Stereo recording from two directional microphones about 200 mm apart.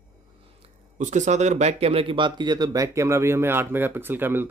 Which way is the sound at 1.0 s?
35° right (ahead or behind).